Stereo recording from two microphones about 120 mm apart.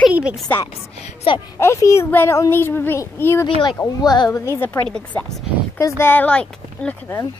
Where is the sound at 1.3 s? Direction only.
50° left (ahead or behind).